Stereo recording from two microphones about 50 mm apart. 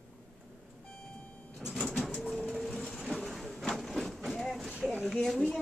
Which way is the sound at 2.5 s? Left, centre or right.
Centre.